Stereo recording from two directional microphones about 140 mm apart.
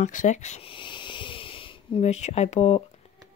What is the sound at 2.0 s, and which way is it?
Speech, 50° left (ahead or behind).